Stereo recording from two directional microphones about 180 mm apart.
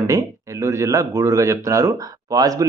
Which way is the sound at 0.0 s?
20° right (ahead or behind).